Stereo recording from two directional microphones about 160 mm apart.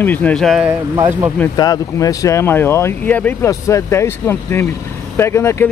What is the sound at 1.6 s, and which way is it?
Speech, 20° left (ahead or behind).